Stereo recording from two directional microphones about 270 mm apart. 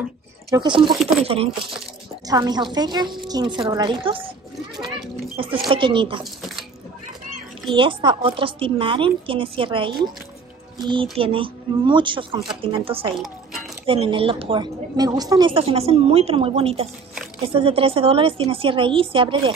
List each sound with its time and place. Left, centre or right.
0.5 s a woman's voice: centre
5.7 s a woman's voice: centre
7.7 s a woman's voice: centre
13.2 s a sound: centre
13.8 s a woman's voice: centre